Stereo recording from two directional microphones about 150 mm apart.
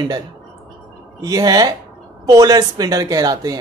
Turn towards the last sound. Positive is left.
turn(degrees=-25)  # may be behind; listen again after turning